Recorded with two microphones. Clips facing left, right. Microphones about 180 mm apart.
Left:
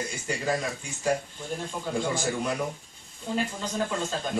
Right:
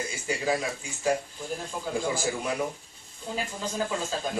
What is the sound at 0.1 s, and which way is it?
Speech, 5° right (ahead or behind).